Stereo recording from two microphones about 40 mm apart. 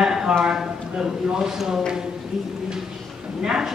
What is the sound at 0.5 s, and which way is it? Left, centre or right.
A man's voice, centre.